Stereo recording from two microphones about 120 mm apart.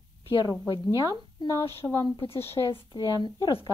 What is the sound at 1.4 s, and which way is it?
A woman's voice, 25° left (ahead or behind).